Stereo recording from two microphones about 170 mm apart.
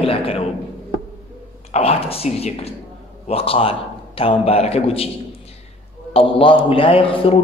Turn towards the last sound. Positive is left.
turn(degrees=30)  # may be behind; listen again after turning